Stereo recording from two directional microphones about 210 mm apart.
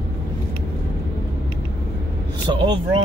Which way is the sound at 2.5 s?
20° right (ahead or behind).